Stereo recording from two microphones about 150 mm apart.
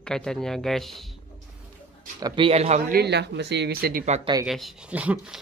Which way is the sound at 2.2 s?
30° right (ahead or behind).